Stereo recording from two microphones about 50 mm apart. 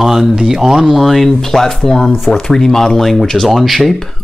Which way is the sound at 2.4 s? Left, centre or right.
Centre.